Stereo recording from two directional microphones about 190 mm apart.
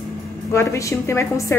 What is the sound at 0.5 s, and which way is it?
A woman's voice, 15° left (ahead or behind).